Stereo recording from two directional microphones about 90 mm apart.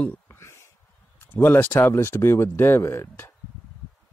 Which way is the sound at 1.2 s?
25° left (ahead or behind).